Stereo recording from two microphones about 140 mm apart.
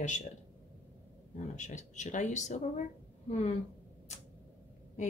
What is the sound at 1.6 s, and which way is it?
A woman's voice, 55° left (ahead or behind).